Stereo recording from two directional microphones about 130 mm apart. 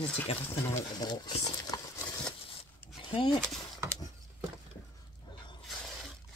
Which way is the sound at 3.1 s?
40° left (ahead or behind).